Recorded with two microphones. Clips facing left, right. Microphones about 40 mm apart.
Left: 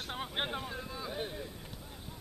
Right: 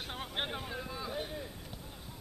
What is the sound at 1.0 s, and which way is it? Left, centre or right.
Boat, centre.